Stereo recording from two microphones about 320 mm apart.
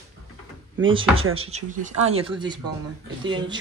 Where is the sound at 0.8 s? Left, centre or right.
Centre.